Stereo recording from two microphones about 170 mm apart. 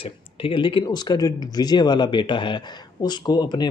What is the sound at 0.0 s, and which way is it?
Speech, 30° left (ahead or behind).